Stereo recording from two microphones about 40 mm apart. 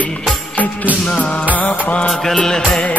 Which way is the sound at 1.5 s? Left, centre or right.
Left.